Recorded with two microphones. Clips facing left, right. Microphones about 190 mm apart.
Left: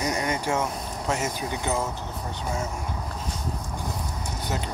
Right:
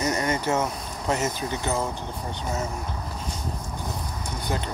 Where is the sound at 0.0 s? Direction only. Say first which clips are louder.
Right 2 dB; 15° left (ahead or behind).